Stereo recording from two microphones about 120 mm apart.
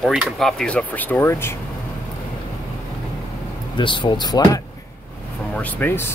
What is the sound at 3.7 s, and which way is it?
Speech, 45° left (ahead or behind).